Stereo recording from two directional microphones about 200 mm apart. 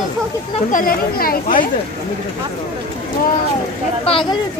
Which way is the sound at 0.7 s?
45° left (ahead or behind).